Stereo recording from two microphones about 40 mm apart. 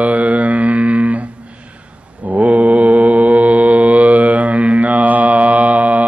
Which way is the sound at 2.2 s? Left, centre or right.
Right.